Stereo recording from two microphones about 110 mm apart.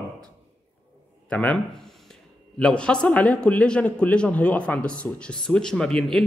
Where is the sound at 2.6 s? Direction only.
10° left (ahead or behind).